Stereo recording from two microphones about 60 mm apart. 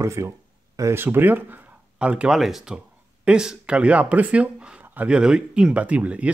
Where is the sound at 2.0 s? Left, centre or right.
Centre.